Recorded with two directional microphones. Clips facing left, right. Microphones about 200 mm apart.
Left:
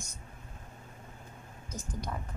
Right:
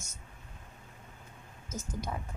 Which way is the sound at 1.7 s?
25° right (ahead or behind).